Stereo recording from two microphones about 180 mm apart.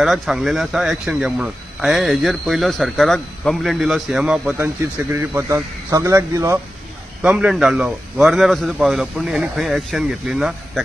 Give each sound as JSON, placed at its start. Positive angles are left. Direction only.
{"t": 0.0, "sound": "a man's voice", "side_deg": 0}
{"t": 5.1, "sound": "a man's voice", "side_deg": -15}
{"t": 7.2, "sound": "a man's voice", "side_deg": -5}